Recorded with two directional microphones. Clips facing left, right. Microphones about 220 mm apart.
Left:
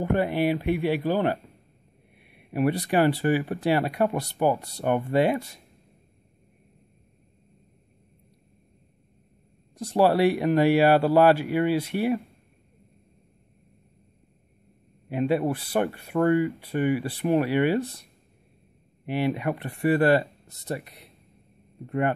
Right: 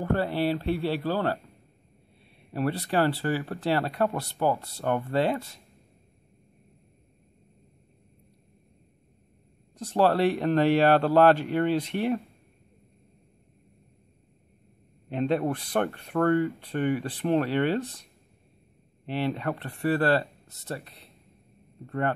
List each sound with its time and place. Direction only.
0.0 s speech: 15° left (ahead or behind)
9.8 s speech: 10° left (ahead or behind)
15.0 s speech: 10° left (ahead or behind)
19.0 s speech: 10° left (ahead or behind)